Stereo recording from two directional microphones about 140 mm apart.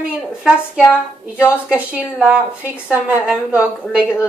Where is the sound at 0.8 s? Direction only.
15° left (ahead or behind).